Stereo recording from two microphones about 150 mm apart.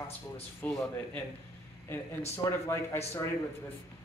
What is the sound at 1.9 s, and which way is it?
Speech, 15° left (ahead or behind).